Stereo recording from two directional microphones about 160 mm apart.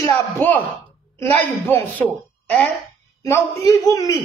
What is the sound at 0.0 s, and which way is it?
Speech, 10° left (ahead or behind).